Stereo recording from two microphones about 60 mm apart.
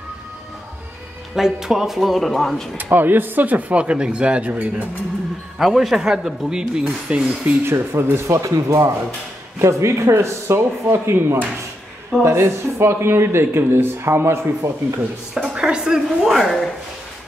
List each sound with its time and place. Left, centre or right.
1.3 s speech: centre
2.8 s speech: right
5.6 s speech: centre
7.6 s speech: right
9.6 s speech: right
12.3 s speech: right
15.3 s speech: centre
16.3 s speech: centre